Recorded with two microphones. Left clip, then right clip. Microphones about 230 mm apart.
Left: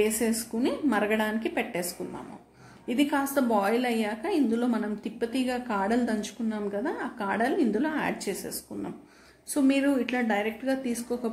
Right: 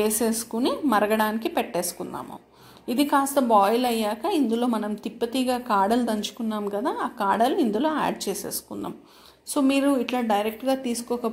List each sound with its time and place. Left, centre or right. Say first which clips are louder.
0.2 s speech: right 3 dB; right
0.7 s a woman's voice: right 5 dB; centre
2.9 s a woman's voice: right 5 dB; centre
9.5 s a woman's voice: right 3 dB; centre